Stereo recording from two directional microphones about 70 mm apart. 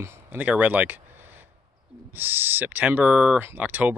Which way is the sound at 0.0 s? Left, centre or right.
Right.